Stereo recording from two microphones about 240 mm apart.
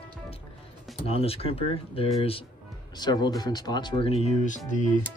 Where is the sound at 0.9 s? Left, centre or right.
Left.